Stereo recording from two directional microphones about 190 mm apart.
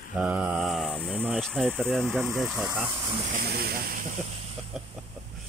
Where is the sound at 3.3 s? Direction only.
55° right (ahead or behind).